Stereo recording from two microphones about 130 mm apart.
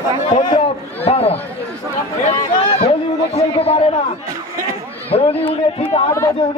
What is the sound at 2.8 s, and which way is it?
Speech, 50° left (ahead or behind).